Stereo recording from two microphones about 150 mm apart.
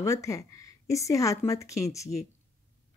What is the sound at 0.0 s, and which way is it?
Speech, 20° left (ahead or behind).